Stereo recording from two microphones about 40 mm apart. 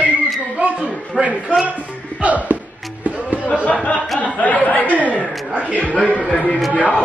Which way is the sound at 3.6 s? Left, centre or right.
Left.